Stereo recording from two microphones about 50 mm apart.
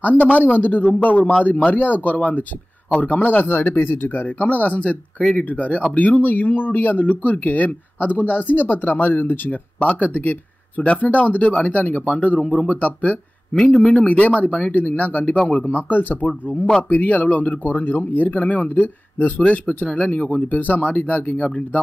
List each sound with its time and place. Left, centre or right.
0.0 s speech: left
9.8 s speech: left
13.5 s speech: centre